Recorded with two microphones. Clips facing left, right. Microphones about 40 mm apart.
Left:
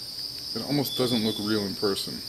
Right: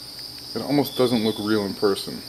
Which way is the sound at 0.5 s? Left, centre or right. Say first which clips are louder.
Right 6 dB; centre.